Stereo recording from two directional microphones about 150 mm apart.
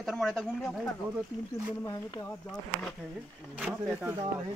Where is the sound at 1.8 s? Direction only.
20° left (ahead or behind).